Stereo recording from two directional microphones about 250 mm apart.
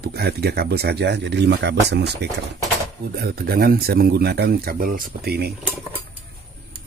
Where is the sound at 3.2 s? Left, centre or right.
Right.